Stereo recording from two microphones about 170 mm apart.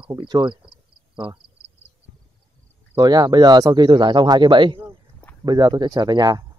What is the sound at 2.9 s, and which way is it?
Speech, 25° right (ahead or behind).